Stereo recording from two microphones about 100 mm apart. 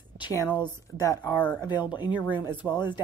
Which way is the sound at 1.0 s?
30° left (ahead or behind).